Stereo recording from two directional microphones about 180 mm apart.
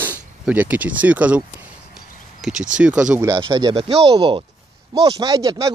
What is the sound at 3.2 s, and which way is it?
Speech, 25° right (ahead or behind).